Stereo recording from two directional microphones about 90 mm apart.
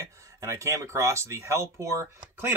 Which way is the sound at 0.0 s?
35° right (ahead or behind).